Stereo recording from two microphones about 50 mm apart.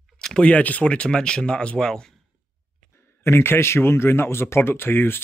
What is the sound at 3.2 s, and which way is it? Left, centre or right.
Speech, left.